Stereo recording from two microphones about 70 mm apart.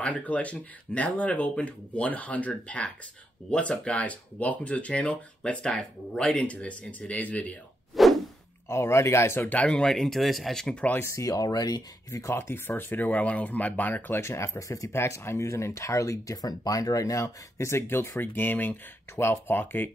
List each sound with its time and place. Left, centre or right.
0.0 s speech: centre
7.9 s a sound: centre
8.6 s speech: left
9.5 s speech: centre
11.1 s speech: left
12.1 s speech: left
14.2 s speech: left
16.3 s speech: left
17.6 s speech: left